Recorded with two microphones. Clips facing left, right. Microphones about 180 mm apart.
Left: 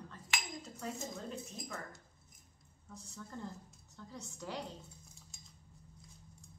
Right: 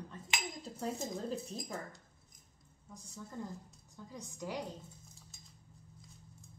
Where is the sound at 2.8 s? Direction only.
10° right (ahead or behind).